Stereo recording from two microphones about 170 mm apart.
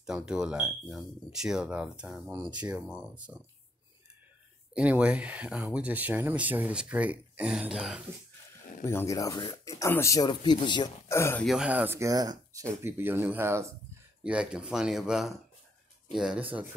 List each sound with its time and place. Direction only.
0.0 s speech: 5° right (ahead or behind)
4.7 s speech: 5° right (ahead or behind)
8.8 s speech: 15° left (ahead or behind)
11.4 s speech: 5° right (ahead or behind)